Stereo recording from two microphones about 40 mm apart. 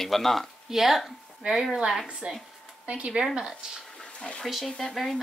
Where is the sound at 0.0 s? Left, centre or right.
Centre.